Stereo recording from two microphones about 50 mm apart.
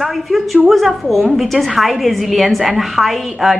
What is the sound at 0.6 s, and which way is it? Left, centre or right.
Speech, centre.